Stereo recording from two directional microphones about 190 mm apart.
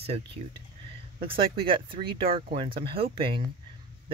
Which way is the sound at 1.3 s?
30° right (ahead or behind).